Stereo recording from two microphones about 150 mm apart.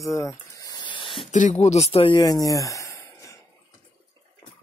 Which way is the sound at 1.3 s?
55° left (ahead or behind).